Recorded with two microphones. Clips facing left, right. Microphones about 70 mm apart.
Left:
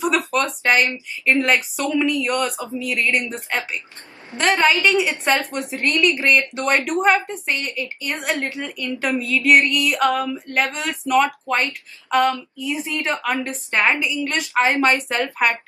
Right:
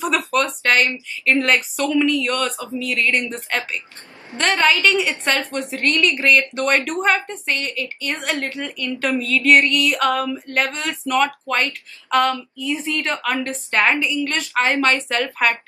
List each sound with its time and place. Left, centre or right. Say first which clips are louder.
0.0 s a sound: even; centre
0.7 s a woman's voice: even; centre
3.3 s a woman's voice: right 1 dB; centre